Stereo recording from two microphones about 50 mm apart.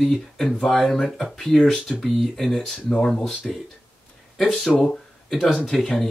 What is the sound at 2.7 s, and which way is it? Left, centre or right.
Speech, centre.